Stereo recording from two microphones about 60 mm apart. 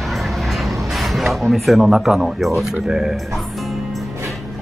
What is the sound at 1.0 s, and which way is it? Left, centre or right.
Speech, centre.